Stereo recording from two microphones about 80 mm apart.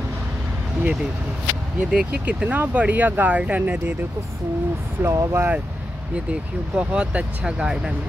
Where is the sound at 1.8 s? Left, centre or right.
Centre.